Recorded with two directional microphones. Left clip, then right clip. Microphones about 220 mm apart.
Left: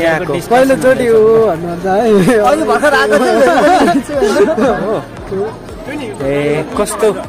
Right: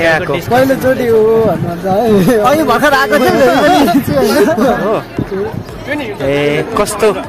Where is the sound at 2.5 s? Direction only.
50° right (ahead or behind).